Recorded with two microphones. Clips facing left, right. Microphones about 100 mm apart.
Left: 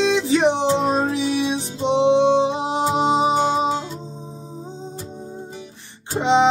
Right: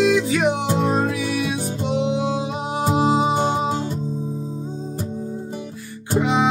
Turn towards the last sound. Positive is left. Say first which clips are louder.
# left 2 dB
turn(degrees=30)  # may be behind; listen again after turning